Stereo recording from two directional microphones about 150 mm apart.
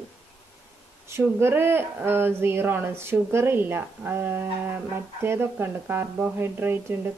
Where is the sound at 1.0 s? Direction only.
15° right (ahead or behind).